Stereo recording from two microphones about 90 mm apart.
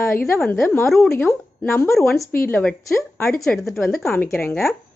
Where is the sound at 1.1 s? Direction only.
25° left (ahead or behind).